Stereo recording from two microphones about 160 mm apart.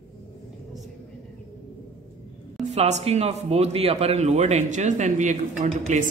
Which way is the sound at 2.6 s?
45° right (ahead or behind).